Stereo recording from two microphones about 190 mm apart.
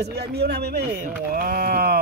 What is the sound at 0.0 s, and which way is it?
Speech, 60° right (ahead or behind).